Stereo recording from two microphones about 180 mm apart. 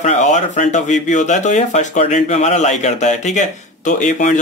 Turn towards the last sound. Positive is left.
turn(degrees=45)  # may be behind; listen again after turning